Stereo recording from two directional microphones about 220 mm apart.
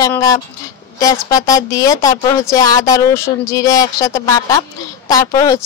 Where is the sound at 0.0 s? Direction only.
15° left (ahead or behind).